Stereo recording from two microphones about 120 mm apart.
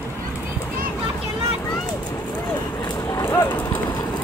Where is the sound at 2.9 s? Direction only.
30° left (ahead or behind).